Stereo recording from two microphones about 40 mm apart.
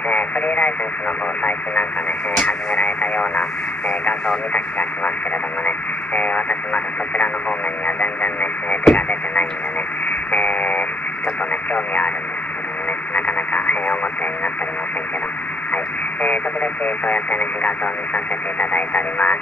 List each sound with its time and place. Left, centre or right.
0.1 s radio: left
2.3 s radio: left
4.6 s speech: left
10.3 s radio: left
11.7 s speech: left
13.1 s radio: left
15.7 s radio: left
16.8 s speech: left